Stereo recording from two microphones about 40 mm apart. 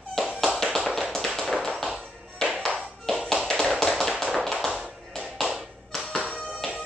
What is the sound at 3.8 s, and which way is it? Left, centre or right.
Tap, centre.